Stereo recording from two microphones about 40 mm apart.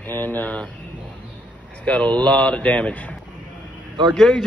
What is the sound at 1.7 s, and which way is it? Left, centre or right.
A man's voice, left.